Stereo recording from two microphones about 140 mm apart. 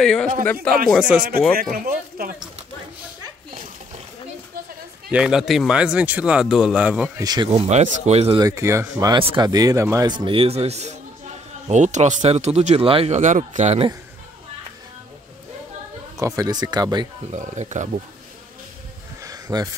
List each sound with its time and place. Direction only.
0.0 s speech: 5° left (ahead or behind)
1.6 s a man's voice: 90° right
5.1 s speech: 5° right (ahead or behind)
7.2 s speech: 30° right (ahead or behind)
7.5 s speech: 55° right (ahead or behind)
8.4 s speech: 20° right (ahead or behind)
9.1 s a man's voice: 30° right (ahead or behind); by 13.7 s 60° right (ahead or behind)
16.2 s speech: 25° right (ahead or behind)
17.3 s speech: 60° right (ahead or behind)
19.2 s a sound: 25° right (ahead or behind)